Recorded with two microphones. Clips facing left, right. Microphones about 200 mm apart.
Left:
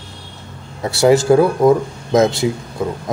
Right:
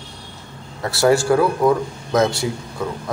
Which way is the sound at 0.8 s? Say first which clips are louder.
Left 4 dB; 20° left (ahead or behind).